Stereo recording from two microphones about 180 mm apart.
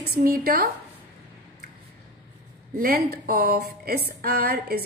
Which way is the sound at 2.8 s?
55° right (ahead or behind).